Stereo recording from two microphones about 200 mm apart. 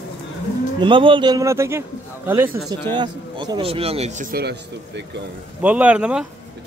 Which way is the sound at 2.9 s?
20° right (ahead or behind).